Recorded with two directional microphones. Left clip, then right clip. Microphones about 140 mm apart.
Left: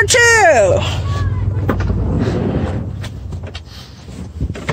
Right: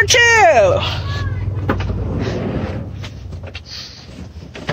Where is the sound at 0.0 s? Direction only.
35° left (ahead or behind).